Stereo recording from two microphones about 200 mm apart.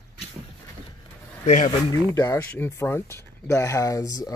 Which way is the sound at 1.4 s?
40° left (ahead or behind).